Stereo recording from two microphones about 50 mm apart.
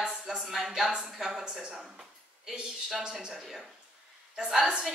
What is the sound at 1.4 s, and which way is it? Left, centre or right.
Speech, centre.